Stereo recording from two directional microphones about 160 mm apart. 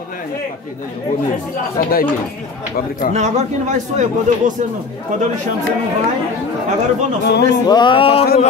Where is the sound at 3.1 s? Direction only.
45° right (ahead or behind).